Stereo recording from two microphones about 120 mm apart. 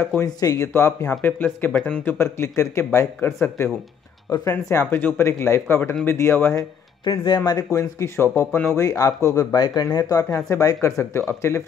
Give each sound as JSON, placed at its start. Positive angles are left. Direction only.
{"t": 0.2, "sound": "speech", "side_deg": 25}
{"t": 2.1, "sound": "speech", "side_deg": 20}
{"t": 7.1, "sound": "speech", "side_deg": 35}